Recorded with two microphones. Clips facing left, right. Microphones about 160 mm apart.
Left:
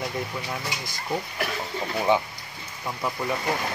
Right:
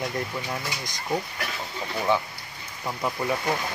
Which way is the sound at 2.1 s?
15° left (ahead or behind).